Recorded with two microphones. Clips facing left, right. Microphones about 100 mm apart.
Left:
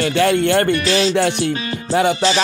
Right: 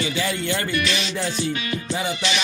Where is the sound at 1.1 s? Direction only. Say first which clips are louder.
Left 9 dB; 70° left (ahead or behind).